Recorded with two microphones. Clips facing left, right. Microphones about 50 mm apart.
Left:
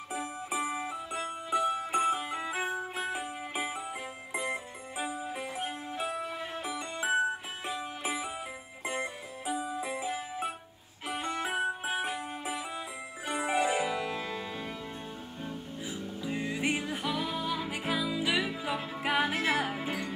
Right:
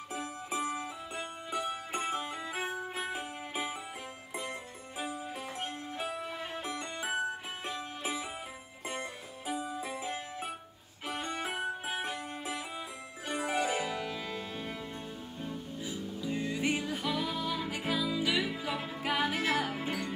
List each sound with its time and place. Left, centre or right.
0.1 s music: centre
1.5 s music: centre
4.3 s music: centre
15.8 s music: centre